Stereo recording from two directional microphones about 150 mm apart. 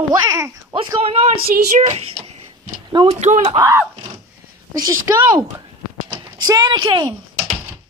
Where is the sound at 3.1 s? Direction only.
50° right (ahead or behind).